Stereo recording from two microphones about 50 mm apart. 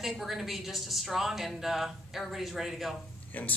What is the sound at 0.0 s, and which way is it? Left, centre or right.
A woman's voice, centre.